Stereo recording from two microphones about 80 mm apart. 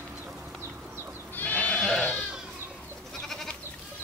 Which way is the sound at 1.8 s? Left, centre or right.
Centre.